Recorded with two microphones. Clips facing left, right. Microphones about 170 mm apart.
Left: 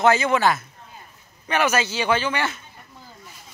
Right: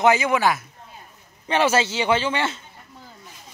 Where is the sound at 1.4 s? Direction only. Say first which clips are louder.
Right 2 dB; 25° right (ahead or behind).